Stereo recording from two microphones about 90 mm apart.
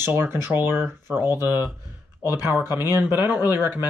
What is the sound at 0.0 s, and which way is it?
Speech, 25° right (ahead or behind).